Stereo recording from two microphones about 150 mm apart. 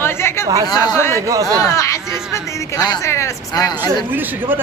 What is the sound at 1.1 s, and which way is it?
Speech, 20° right (ahead or behind).